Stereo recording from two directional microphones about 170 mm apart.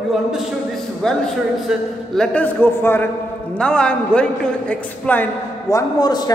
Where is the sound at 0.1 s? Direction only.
Centre (ahead or behind).